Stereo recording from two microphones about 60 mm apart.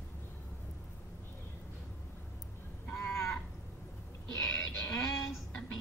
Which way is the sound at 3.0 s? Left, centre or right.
Left.